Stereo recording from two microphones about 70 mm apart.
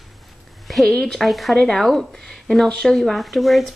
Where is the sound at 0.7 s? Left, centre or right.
Centre.